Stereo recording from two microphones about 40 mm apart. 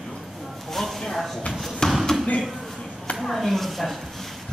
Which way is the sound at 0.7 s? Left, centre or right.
Centre.